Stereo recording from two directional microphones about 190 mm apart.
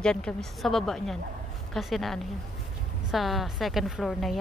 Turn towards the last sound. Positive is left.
turn(degrees=0)  # may be behind; listen again after turning